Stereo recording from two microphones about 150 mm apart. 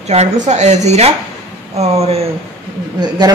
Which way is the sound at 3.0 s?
25° right (ahead or behind).